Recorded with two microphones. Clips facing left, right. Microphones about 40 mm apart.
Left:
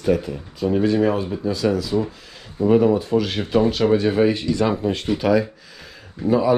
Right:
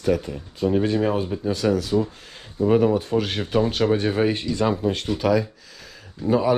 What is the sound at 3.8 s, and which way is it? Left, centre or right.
Speech, left.